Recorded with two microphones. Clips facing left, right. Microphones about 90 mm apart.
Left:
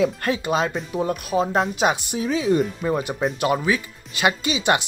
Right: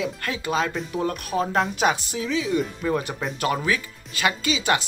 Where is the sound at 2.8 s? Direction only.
10° left (ahead or behind).